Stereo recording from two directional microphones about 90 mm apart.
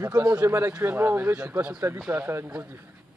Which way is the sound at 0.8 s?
25° right (ahead or behind).